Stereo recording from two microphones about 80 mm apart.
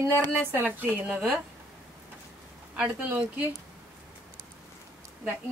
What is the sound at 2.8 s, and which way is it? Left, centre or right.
Speech, right.